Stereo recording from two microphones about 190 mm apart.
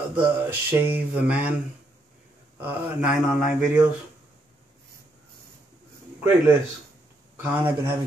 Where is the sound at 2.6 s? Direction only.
10° right (ahead or behind).